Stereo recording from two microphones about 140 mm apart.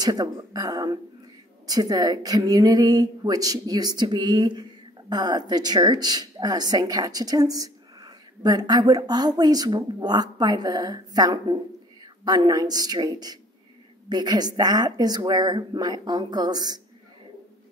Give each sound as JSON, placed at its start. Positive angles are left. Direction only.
{"t": 0.0, "sound": "speech", "side_deg": -30}